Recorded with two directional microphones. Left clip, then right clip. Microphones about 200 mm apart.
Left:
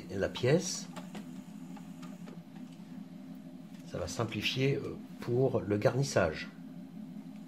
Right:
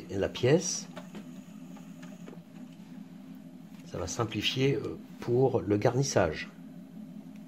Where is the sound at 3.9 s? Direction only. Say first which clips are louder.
Right 3 dB; 35° right (ahead or behind).